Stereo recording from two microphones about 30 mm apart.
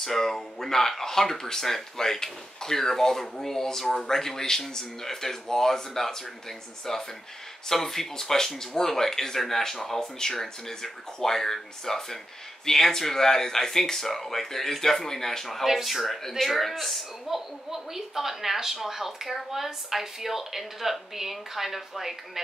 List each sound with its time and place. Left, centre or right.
0.0 s speech: centre
15.7 s speech: centre
17.6 s a woman's voice: centre